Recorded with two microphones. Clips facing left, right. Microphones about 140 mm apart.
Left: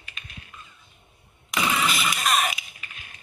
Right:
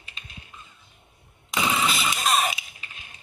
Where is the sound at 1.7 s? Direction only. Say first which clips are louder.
Even; 30° right (ahead or behind).